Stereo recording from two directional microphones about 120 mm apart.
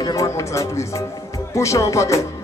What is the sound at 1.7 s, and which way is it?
Speech, 25° left (ahead or behind).